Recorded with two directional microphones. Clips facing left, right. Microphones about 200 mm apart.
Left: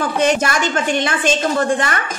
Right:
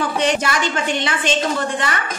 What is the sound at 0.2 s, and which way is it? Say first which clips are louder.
A woman's voice: left 4 dB; 45° left (ahead or behind).